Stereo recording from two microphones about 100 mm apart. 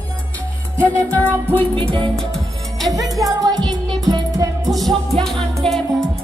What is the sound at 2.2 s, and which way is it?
Music, 5° left (ahead or behind).